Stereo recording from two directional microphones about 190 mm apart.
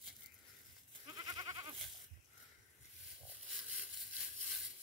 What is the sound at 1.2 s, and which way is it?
Goat, 20° right (ahead or behind).